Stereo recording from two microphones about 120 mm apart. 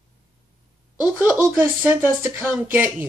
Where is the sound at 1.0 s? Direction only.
15° right (ahead or behind).